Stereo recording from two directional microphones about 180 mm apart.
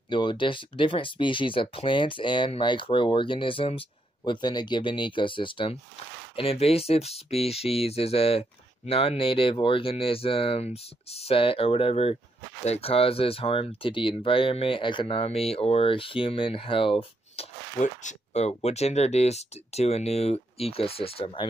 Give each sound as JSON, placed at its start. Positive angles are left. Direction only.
{"t": 0.1, "sound": "speech", "side_deg": 25}